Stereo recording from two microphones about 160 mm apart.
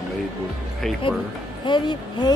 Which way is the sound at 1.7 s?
30° left (ahead or behind).